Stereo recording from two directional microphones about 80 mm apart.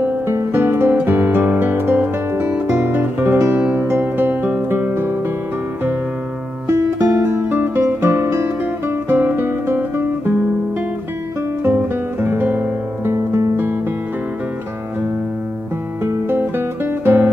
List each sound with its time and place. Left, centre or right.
0.0 s music: right
6.7 s music: right
11.6 s guitar: right
16.0 s guitar: right